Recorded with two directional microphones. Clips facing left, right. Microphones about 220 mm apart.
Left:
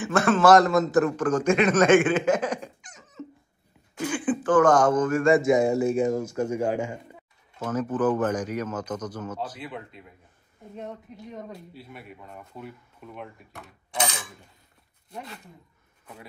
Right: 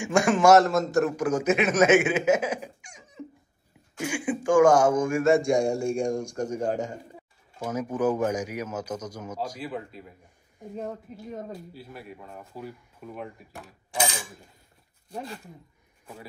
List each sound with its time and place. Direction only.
0.0 s a man's voice: 15° right (ahead or behind)
0.6 s a man's voice: centre (ahead or behind)
5.3 s speech: 5° left (ahead or behind)
7.5 s a man's voice: 10° right (ahead or behind)
15.1 s speech: 35° right (ahead or behind)